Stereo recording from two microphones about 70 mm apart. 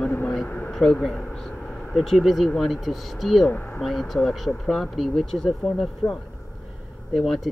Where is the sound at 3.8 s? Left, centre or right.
Centre.